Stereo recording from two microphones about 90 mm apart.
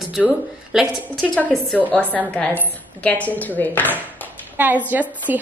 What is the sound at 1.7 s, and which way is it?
A woman's voice, 20° left (ahead or behind).